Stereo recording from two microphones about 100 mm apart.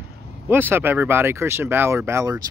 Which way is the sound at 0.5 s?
20° right (ahead or behind).